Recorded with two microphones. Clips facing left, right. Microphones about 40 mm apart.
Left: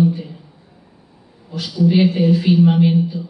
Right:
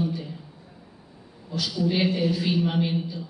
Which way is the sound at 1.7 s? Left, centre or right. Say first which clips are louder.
Left 10 dB; centre.